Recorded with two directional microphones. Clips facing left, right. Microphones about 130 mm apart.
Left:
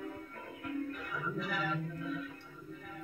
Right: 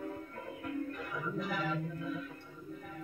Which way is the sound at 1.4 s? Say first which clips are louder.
Right 1 dB; 35° right (ahead or behind).